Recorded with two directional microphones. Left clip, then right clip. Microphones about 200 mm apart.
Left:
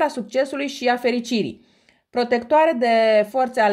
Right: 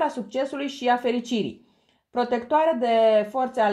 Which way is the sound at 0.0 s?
40° left (ahead or behind).